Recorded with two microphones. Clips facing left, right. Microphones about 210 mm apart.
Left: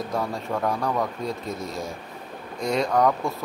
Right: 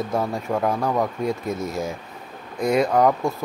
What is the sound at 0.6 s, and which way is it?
Speech, 20° right (ahead or behind).